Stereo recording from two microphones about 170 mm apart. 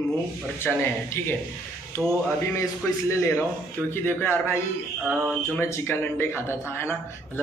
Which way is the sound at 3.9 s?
15° left (ahead or behind).